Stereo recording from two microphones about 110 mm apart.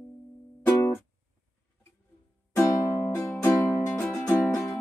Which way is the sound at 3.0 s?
25° left (ahead or behind).